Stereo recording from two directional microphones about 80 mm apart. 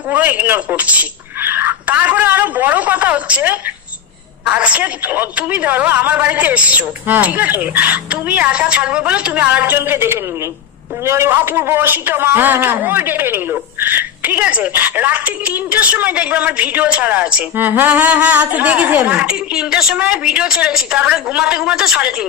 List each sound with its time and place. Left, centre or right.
0.1 s a man's voice: right